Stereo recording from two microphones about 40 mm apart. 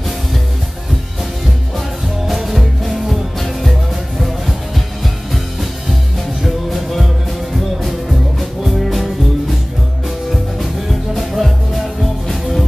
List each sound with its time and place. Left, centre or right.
2.2 s music: centre
3.3 s music: centre